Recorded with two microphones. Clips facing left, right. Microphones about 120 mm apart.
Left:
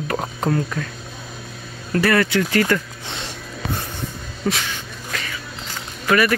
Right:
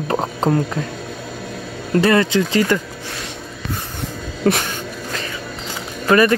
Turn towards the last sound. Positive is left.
turn(degrees=-30)  # may be behind; listen again after turning